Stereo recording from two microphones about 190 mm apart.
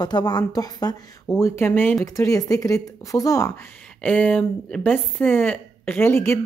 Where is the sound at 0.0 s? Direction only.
20° left (ahead or behind).